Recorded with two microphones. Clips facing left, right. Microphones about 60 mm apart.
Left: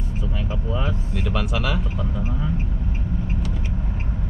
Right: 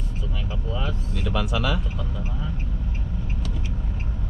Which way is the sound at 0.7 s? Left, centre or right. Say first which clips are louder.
Left 2 dB; centre.